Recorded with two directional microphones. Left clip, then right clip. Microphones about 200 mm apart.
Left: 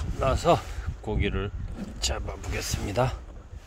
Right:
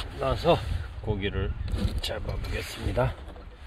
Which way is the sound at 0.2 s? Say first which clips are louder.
Left 1 dB; 20° left (ahead or behind).